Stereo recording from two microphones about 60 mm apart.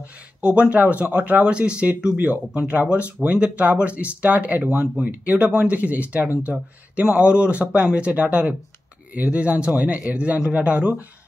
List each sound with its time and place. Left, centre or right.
0.4 s speech: centre